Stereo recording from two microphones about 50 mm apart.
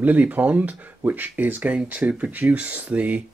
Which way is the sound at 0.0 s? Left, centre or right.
Right.